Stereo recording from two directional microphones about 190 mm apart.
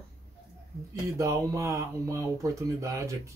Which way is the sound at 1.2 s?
15° right (ahead or behind).